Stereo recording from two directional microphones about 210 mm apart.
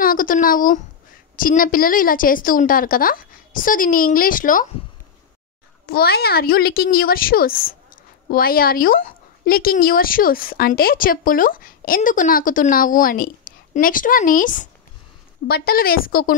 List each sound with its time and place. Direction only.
0.0 s a woman's voice: 40° left (ahead or behind)
5.9 s a woman's voice: 45° left (ahead or behind)